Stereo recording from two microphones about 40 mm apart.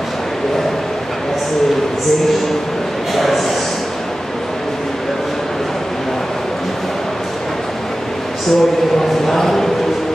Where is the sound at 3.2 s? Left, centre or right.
Centre.